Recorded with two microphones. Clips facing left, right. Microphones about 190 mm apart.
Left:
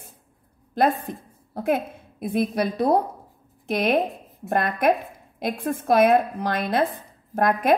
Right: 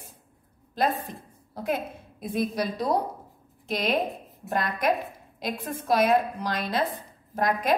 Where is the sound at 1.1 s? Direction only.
55° left (ahead or behind).